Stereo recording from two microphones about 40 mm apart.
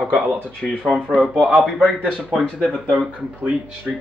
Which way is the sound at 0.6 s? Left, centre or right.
Centre.